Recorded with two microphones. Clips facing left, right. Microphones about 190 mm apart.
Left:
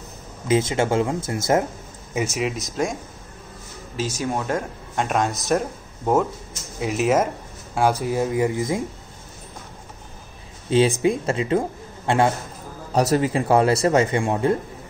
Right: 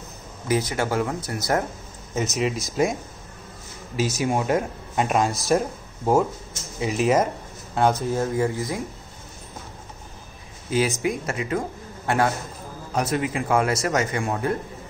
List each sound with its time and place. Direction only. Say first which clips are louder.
0.5 s speech: left 4 dB; 25° left (ahead or behind)
2.3 s speech: right 1 dB; centre (ahead or behind); by 8.8 s 20° left (ahead or behind)
11.0 s speech: left 5 dB; 25° left (ahead or behind)